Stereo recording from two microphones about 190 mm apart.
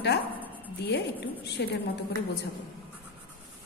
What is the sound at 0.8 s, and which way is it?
Speech, 65° left (ahead or behind).